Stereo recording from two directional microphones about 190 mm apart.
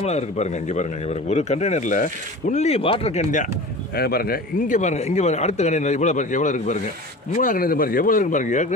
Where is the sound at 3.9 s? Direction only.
55° left (ahead or behind).